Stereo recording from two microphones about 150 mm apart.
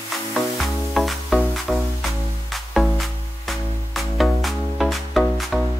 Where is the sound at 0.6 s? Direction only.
Centre (ahead or behind).